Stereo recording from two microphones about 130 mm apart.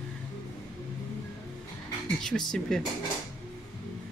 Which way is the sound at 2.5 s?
5° left (ahead or behind).